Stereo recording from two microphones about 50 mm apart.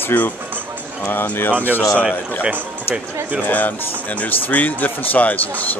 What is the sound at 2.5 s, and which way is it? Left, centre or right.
Speech, right.